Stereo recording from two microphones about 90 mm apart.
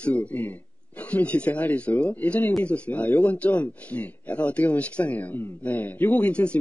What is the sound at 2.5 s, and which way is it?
Speech, 15° left (ahead or behind).